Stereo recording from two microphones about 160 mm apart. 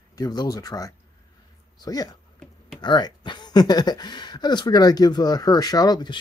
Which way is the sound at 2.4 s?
5° left (ahead or behind).